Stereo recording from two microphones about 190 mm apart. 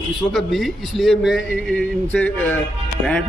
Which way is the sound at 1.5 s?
5° left (ahead or behind).